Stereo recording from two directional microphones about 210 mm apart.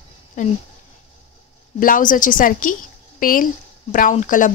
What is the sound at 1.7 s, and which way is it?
A woman's voice, 40° left (ahead or behind).